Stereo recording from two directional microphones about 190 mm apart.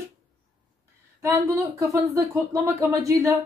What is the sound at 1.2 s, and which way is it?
A woman's voice, 15° right (ahead or behind).